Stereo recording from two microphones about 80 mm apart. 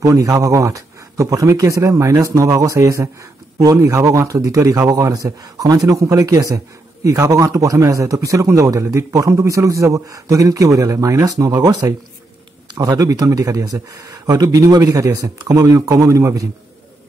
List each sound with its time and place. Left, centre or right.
0.0 s speech: right